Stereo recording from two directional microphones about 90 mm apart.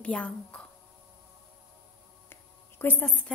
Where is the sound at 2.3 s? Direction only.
25° left (ahead or behind).